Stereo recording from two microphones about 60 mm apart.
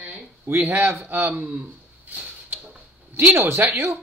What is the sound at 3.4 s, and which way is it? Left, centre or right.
Speech, right.